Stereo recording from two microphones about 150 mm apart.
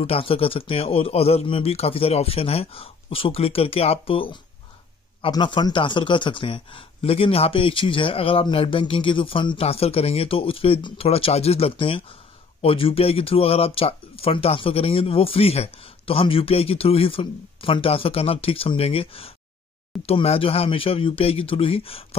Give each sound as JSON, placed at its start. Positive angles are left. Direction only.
{"t": 0.0, "sound": "speech", "side_deg": 40}